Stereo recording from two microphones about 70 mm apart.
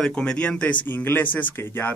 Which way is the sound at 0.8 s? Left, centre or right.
Left.